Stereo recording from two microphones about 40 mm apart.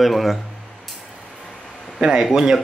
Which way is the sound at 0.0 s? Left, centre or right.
Centre.